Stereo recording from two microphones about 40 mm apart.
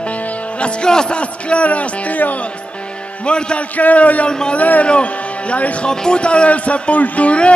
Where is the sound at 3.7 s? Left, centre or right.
Left.